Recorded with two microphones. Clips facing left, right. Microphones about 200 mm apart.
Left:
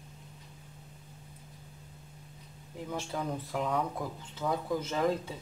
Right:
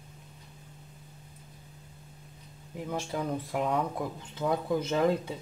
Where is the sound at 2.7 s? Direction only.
10° right (ahead or behind).